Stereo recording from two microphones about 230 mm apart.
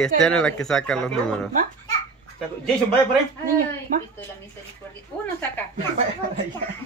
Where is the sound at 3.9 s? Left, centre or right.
Right.